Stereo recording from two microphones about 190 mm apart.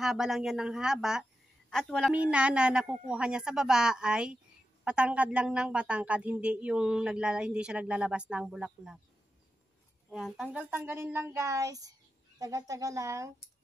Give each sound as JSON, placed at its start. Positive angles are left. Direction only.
{"t": 0.0, "sound": "a woman's voice", "side_deg": 0}
{"t": 10.0, "sound": "speech", "side_deg": 0}